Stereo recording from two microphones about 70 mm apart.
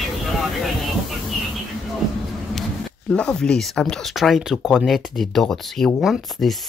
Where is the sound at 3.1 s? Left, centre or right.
Centre.